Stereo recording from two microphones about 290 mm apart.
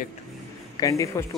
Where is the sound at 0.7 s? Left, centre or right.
Centre.